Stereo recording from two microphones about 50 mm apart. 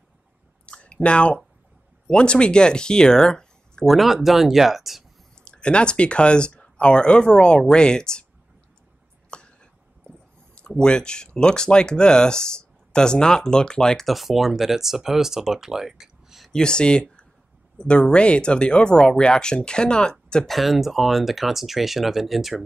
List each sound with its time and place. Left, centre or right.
0.7 s a sound: left
2.0 s speech: centre
3.8 s speech: centre
5.5 s speech: left
9.3 s a sound: centre
10.8 s speech: centre
14.0 s speech: centre
16.5 s speech: centre
20.4 s speech: centre